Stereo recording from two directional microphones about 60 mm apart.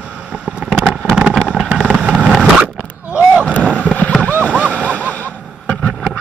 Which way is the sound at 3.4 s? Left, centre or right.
Left.